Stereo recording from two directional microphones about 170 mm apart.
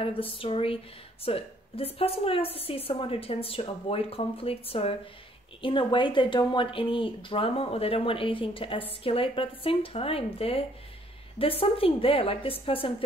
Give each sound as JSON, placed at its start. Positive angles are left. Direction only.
{"t": 0.0, "sound": "speech", "side_deg": 30}